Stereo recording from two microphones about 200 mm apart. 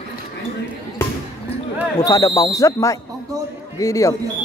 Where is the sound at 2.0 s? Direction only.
15° left (ahead or behind).